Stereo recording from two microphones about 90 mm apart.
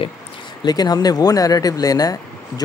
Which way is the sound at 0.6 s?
50° left (ahead or behind).